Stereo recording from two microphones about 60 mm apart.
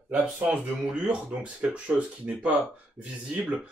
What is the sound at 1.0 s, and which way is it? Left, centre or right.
Speech, centre.